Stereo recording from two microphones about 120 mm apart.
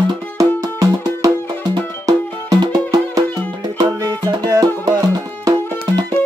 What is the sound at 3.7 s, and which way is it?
Music, 35° right (ahead or behind).